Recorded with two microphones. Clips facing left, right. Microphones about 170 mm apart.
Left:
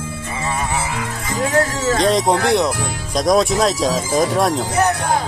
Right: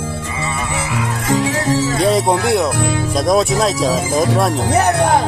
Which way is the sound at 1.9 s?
5° right (ahead or behind).